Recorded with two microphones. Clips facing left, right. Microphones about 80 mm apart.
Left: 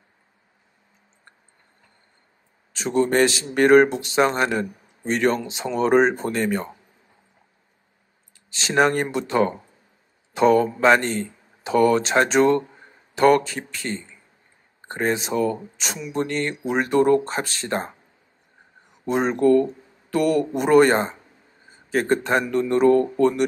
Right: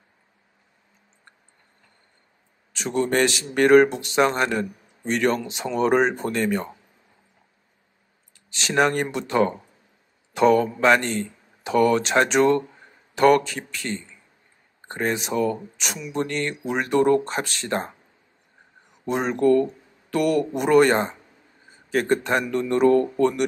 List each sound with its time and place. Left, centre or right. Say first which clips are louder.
2.7 s speech: left 3 dB; left
8.5 s speech: left 2 dB; left
19.0 s speech: left 1 dB; left